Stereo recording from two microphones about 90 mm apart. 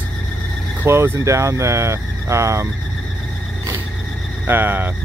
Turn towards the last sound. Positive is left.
turn(degrees=-25)  # may be behind; listen again after turning